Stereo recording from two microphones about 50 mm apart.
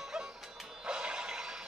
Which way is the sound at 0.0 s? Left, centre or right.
Centre.